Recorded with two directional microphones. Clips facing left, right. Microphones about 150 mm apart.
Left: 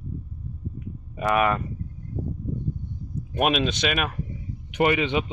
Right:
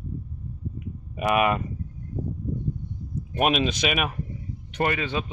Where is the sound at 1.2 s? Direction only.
15° right (ahead or behind).